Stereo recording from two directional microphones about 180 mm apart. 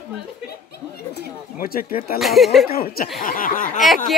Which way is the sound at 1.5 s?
55° left (ahead or behind).